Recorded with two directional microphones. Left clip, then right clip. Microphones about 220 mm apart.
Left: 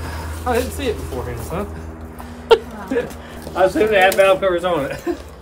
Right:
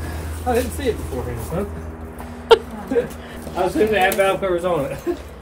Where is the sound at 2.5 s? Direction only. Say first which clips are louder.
Even; 15° left (ahead or behind).